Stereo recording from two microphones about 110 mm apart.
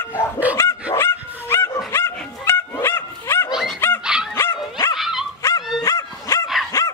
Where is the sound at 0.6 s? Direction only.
25° left (ahead or behind).